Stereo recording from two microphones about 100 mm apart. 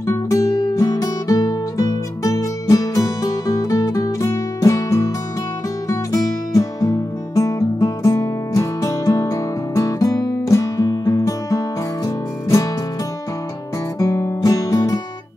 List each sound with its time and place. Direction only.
0.0 s music: 30° left (ahead or behind)
6.5 s music: 35° left (ahead or behind)
13.9 s guitar: 30° left (ahead or behind)